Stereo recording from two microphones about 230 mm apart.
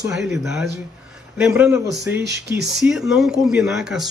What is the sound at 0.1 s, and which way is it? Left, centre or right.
A man's voice, centre.